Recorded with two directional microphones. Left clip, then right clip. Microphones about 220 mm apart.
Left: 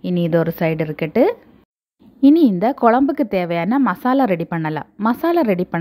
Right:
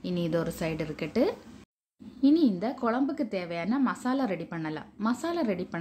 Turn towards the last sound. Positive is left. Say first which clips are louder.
# left 13 dB
turn(degrees=35)  # may be behind; listen again after turning